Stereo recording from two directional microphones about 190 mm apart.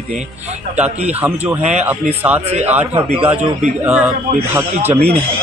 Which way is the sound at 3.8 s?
5° right (ahead or behind).